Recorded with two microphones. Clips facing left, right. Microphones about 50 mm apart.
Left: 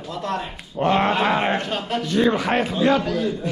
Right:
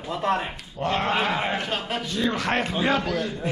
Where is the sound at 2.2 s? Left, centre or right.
Centre.